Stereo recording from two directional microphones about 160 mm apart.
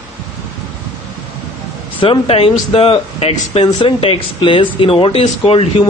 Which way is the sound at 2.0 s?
35° left (ahead or behind).